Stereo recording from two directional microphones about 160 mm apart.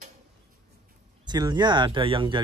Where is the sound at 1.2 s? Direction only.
25° right (ahead or behind).